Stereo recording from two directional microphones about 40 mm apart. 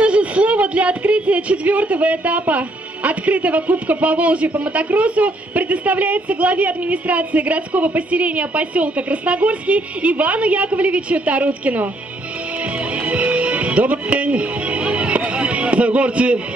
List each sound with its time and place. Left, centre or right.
0.0 s speech: right
12.9 s music: right